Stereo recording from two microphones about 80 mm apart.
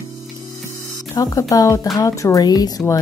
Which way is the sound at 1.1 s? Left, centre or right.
Left.